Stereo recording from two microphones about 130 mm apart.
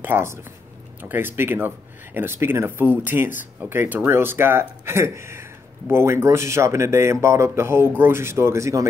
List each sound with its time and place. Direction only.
0.0 s speech: 20° right (ahead or behind)